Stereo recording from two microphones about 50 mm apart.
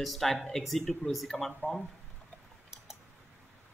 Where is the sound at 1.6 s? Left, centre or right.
Left.